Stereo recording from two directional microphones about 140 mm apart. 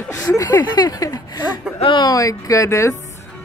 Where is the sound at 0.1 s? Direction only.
20° left (ahead or behind).